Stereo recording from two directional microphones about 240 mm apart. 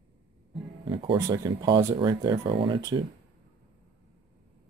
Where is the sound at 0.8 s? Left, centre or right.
Right.